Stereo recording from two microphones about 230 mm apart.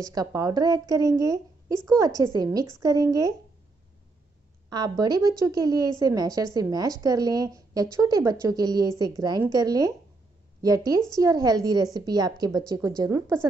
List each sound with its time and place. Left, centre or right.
0.0 s a woman's voice: centre
4.6 s a woman's voice: centre